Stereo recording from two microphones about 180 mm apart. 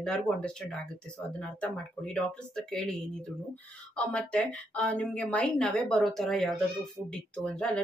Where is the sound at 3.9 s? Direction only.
5° left (ahead or behind).